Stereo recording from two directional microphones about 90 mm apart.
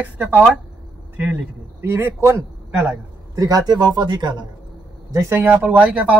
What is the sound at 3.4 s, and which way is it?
Speech, 45° right (ahead or behind).